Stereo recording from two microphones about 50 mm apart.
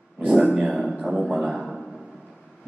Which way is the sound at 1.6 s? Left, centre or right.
Centre.